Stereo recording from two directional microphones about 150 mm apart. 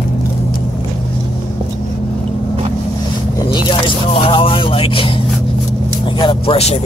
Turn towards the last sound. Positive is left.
turn(degrees=40)  # may be behind; listen again after turning